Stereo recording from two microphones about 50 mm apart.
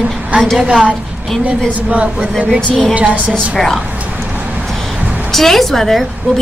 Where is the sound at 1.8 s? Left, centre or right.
Right.